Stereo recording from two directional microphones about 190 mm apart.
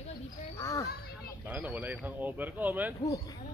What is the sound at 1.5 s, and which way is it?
Speech, 10° right (ahead or behind).